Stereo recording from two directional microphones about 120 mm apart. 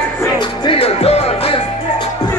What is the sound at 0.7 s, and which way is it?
Music, 50° left (ahead or behind).